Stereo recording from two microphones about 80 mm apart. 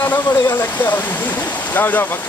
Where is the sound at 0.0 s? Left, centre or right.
Left.